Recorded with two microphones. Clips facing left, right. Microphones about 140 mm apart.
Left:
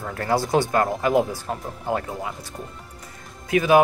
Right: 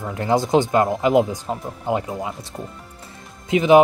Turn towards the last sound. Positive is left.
turn(degrees=-20)  # may be behind; listen again after turning